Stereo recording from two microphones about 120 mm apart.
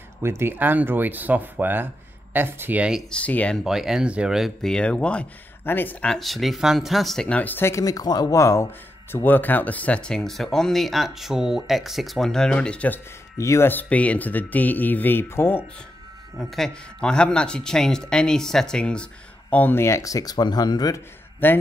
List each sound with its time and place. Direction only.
0.2 s speech: 20° right (ahead or behind)
3.1 s speech: 10° left (ahead or behind)
3.6 s speech: 5° right (ahead or behind); by 13.0 s 10° left (ahead or behind)
13.4 s speech: 20° left (ahead or behind)
16.3 s speech: centre (ahead or behind); by 21.0 s 35° left (ahead or behind)
21.4 s speech: 15° left (ahead or behind)